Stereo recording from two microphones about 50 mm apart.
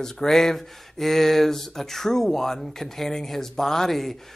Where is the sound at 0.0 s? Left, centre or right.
Centre.